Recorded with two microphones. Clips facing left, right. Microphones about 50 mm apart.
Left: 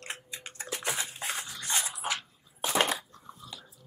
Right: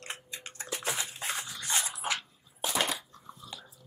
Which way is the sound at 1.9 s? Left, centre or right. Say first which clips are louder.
Even; centre.